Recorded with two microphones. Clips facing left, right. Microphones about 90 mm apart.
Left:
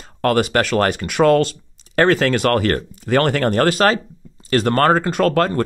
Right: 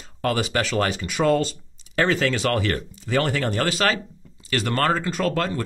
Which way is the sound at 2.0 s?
55° left (ahead or behind).